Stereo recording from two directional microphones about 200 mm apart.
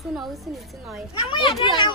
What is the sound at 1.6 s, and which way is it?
Speech, 20° left (ahead or behind).